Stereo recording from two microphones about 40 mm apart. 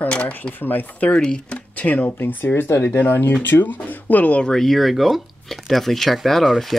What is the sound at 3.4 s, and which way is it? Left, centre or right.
Speech, left.